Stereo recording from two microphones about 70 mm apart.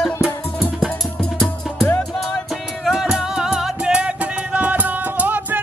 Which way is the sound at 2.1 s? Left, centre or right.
Centre.